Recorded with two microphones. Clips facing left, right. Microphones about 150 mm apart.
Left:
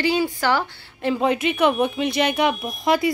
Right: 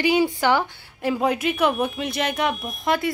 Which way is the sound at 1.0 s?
5° right (ahead or behind).